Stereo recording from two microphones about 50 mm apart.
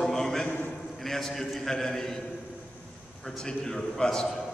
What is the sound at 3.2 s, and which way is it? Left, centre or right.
A man's voice, centre.